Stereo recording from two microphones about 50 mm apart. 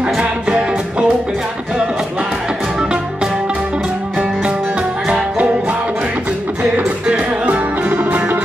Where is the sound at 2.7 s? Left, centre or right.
Centre.